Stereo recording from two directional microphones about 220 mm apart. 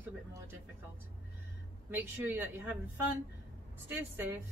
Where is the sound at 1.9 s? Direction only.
10° right (ahead or behind).